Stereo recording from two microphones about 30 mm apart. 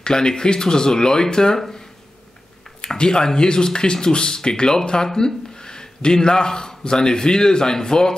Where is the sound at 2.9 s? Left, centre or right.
Left.